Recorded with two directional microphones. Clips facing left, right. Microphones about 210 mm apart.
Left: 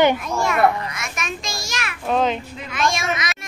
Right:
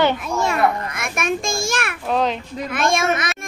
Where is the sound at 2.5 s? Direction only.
50° right (ahead or behind).